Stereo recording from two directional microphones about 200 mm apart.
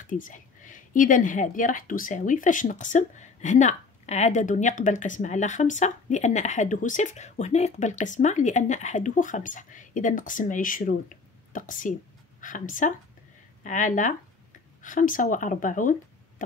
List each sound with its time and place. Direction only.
0.0 s speech: 40° left (ahead or behind)